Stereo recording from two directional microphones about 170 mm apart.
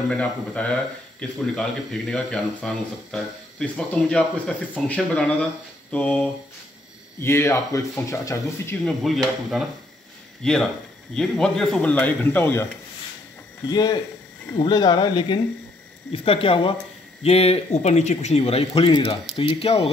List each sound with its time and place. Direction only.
0.1 s a man's voice: 5° left (ahead or behind)
8.8 s a man's voice: centre (ahead or behind)
13.7 s speech: 25° left (ahead or behind)